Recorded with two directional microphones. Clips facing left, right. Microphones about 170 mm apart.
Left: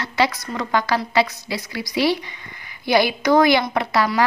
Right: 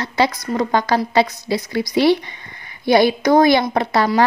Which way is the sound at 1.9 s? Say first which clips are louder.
Right 5 dB; 60° right (ahead or behind).